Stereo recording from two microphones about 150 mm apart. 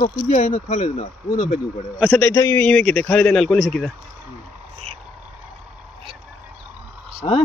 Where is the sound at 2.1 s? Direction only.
10° left (ahead or behind).